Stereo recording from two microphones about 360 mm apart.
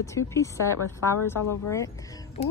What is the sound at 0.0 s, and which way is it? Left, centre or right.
Speech, centre.